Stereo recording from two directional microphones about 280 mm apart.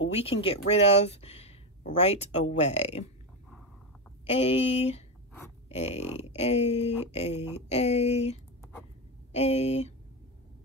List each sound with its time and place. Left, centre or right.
0.1 s speech: left
4.4 s speech: left